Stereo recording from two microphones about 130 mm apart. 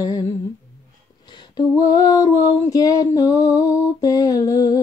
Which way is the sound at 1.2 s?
35° left (ahead or behind).